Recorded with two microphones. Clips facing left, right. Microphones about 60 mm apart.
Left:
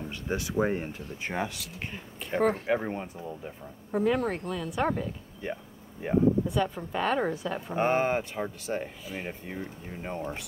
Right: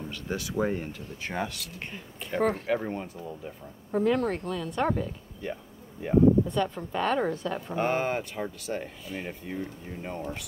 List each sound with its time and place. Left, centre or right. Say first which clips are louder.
0.1 s speech: left 2 dB; left
1.3 s speech: even; centre
2.7 s speech: even; centre
3.3 s speech: even; centre
5.4 s speech: even; left
6.0 s speech: right 3 dB; centre
7.7 s speech: left 2 dB; left